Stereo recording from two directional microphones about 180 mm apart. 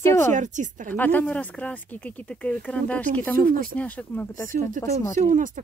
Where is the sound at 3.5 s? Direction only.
50° right (ahead or behind).